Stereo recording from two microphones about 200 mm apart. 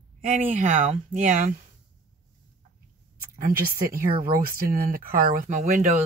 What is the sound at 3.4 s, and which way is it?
Speech, 45° right (ahead or behind).